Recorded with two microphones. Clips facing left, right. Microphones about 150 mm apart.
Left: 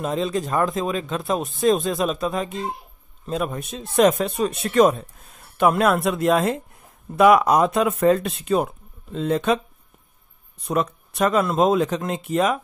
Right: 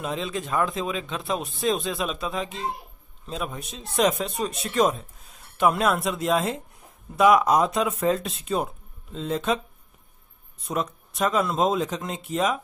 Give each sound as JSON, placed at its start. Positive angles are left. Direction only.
{"t": 0.0, "sound": "a man's voice", "side_deg": 40}
{"t": 3.5, "sound": "speech", "side_deg": 0}
{"t": 4.0, "sound": "a man's voice", "side_deg": 50}
{"t": 4.3, "sound": "speech", "side_deg": 0}
{"t": 6.1, "sound": "speech", "side_deg": 55}
{"t": 6.4, "sound": "speech", "side_deg": 0}
{"t": 10.6, "sound": "speech", "side_deg": 0}